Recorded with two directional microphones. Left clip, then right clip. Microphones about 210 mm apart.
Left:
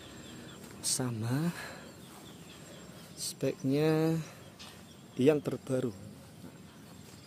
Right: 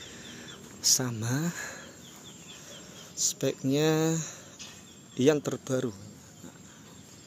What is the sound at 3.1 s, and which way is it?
Speech, 10° right (ahead or behind).